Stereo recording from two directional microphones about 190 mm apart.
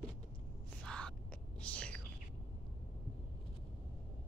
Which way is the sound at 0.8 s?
5° left (ahead or behind).